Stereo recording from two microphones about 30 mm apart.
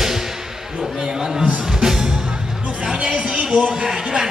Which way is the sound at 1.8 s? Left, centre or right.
Centre.